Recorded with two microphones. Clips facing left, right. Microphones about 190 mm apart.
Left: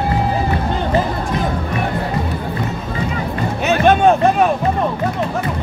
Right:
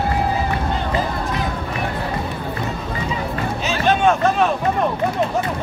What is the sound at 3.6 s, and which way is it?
Music, 55° left (ahead or behind).